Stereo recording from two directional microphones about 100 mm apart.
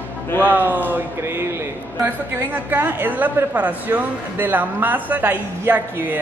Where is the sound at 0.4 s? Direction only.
15° right (ahead or behind).